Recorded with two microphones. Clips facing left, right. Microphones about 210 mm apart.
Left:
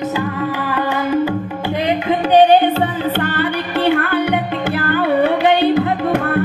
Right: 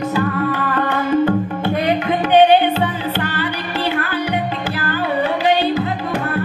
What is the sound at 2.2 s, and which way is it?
Music, 40° left (ahead or behind).